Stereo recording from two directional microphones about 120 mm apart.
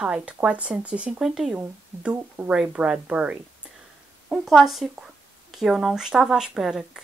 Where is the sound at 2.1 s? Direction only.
20° right (ahead or behind).